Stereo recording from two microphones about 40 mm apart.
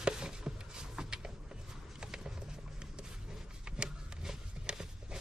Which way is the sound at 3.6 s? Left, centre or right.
Centre.